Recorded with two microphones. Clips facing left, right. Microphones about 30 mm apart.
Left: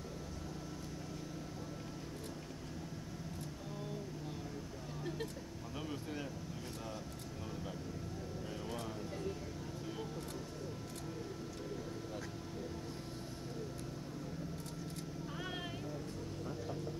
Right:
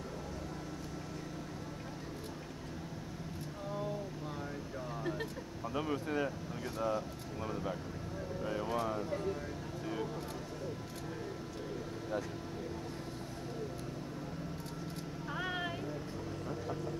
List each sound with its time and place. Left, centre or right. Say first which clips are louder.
5.8 s speech: right 9 dB; right
8.5 s vehicle: right 10 dB; right
15.3 s vehicle: right 8 dB; centre